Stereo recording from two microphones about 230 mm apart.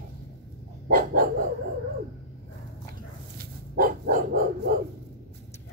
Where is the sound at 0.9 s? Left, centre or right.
Right.